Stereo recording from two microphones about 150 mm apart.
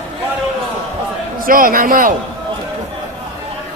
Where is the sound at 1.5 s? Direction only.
65° right (ahead or behind).